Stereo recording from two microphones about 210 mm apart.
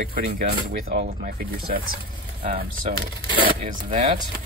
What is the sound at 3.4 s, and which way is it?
Speech, 35° right (ahead or behind).